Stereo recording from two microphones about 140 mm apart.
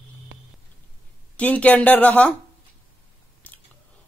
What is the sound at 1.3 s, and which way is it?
Speech, 10° left (ahead or behind).